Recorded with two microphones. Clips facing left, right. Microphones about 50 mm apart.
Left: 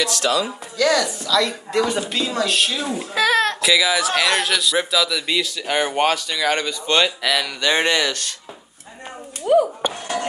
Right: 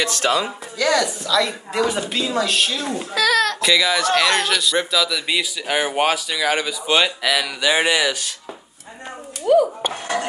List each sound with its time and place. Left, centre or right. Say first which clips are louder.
0.0 s speech: right 1 dB; right
0.7 s speech: left 1 dB; centre
3.2 s speech: even; left
3.6 s speech: even; centre
9.4 s a sound: right 1 dB; centre